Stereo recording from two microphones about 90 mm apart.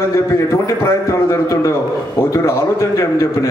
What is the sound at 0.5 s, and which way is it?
A man's voice, 30° left (ahead or behind).